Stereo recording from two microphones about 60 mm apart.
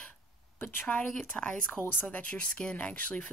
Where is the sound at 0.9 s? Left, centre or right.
Centre.